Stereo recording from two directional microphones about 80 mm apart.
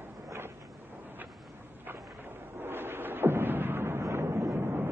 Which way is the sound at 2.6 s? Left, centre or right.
Right.